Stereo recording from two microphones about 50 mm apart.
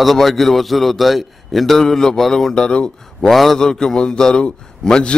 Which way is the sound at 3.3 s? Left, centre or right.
Centre.